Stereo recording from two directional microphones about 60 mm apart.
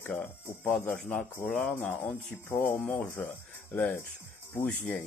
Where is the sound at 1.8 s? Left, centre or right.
Left.